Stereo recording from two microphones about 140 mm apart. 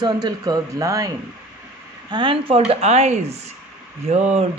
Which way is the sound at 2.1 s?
35° right (ahead or behind).